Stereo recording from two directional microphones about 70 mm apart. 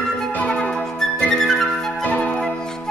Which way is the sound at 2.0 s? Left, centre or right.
Left.